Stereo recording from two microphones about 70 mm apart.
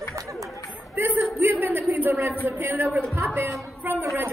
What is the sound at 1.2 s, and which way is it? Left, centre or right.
Speech, right.